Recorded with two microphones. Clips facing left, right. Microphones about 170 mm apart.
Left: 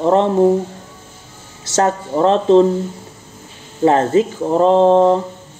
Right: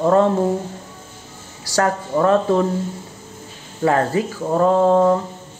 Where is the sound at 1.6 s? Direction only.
25° left (ahead or behind).